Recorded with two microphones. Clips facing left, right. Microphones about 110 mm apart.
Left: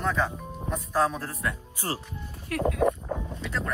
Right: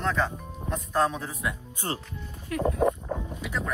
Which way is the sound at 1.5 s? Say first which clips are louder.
Even; 25° right (ahead or behind).